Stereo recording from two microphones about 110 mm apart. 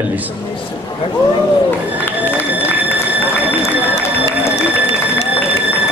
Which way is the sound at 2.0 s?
20° left (ahead or behind).